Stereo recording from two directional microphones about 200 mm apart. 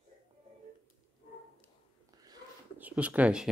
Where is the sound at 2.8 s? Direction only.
5° right (ahead or behind).